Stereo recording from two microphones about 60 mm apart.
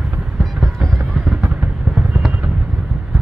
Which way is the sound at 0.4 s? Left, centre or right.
Centre.